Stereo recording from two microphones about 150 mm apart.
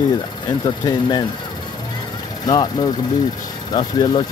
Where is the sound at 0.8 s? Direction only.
25° left (ahead or behind).